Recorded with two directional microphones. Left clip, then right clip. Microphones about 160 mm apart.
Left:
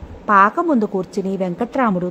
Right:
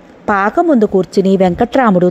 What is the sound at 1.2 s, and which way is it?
Speech, 40° right (ahead or behind).